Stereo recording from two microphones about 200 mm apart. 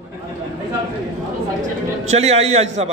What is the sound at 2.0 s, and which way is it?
Speech, 35° right (ahead or behind).